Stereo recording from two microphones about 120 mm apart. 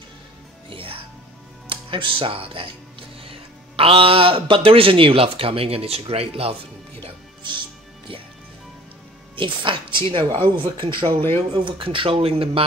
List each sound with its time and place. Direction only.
0.7 s music: 50° right (ahead or behind)
1.7 s speech: 45° right (ahead or behind)
7.0 s music: 40° right (ahead or behind)
9.3 s speech: 45° right (ahead or behind)